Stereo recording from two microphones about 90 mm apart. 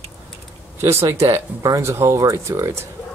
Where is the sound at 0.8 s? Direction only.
30° right (ahead or behind).